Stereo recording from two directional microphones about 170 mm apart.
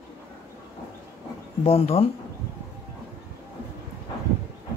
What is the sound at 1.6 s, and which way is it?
Speech, 35° left (ahead or behind).